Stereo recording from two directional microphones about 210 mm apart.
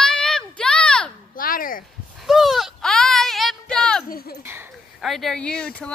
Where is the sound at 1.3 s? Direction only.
40° left (ahead or behind).